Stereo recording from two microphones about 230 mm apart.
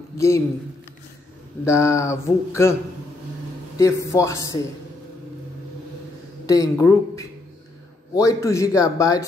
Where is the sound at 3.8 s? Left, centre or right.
Centre.